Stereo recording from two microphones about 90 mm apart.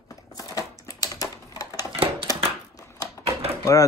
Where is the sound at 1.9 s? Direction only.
75° right (ahead or behind).